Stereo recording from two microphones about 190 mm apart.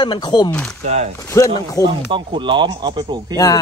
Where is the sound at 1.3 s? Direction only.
15° left (ahead or behind).